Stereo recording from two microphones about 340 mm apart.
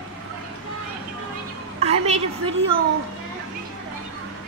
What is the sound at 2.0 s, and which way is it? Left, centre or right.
Speech, centre.